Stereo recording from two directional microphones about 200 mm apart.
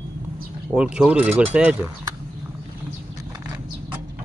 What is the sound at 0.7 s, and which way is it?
Speech, 5° right (ahead or behind).